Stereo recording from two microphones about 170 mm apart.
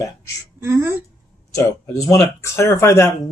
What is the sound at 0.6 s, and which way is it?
Speech, 15° right (ahead or behind).